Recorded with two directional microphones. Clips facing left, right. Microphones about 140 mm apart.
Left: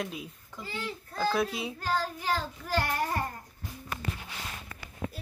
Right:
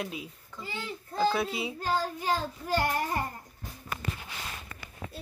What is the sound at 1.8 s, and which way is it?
A child's voice, 20° right (ahead or behind).